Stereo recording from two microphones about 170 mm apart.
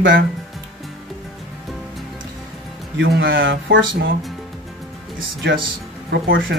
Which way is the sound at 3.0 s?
90° right.